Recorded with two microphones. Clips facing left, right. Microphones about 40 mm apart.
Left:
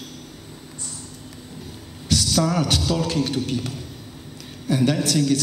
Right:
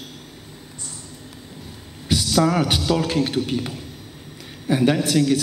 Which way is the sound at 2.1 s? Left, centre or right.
Centre.